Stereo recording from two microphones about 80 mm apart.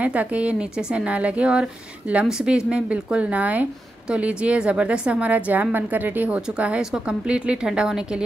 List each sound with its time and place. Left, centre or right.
0.0 s a woman's voice: centre